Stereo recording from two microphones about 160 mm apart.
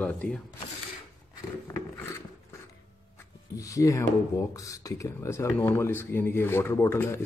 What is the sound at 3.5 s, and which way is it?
Speech, 20° left (ahead or behind).